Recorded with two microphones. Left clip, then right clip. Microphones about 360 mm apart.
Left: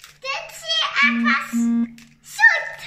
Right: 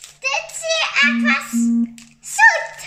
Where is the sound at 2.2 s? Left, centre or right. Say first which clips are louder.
Right 3 dB; centre.